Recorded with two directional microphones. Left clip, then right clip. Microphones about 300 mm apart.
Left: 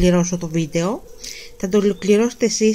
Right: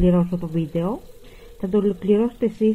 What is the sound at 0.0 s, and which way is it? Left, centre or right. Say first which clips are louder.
Speech: left 3 dB; centre.